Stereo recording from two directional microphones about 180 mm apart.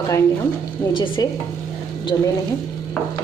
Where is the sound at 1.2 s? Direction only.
20° left (ahead or behind).